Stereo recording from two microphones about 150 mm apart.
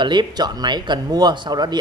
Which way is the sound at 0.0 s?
30° right (ahead or behind).